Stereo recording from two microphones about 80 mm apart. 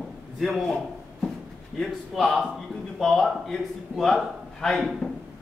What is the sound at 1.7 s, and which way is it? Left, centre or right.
A man's voice, centre.